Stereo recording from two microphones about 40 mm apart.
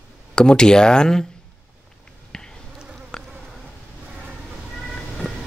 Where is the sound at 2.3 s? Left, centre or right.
Centre.